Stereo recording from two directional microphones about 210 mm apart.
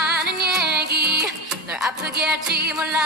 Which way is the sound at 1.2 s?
5° right (ahead or behind).